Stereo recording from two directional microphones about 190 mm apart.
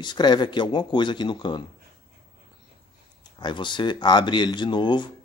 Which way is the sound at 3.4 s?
25° left (ahead or behind).